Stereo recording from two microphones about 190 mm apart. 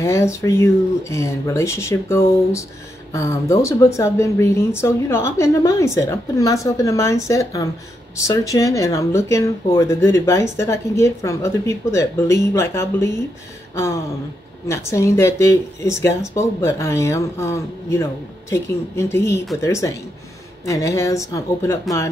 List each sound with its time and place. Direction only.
0.0 s speech: 15° left (ahead or behind)
14.7 s speech: 15° left (ahead or behind)